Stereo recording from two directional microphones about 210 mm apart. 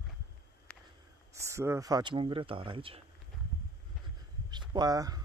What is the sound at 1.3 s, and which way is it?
Speech, 15° right (ahead or behind).